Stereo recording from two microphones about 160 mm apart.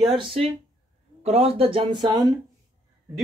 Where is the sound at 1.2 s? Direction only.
40° right (ahead or behind); by 2.3 s 25° right (ahead or behind).